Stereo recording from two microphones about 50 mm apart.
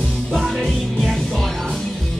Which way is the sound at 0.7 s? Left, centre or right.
Centre.